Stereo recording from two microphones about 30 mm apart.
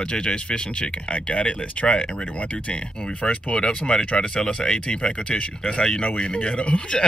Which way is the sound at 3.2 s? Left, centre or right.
Left.